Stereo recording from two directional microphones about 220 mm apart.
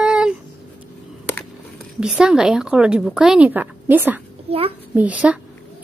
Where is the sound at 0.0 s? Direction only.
5° right (ahead or behind).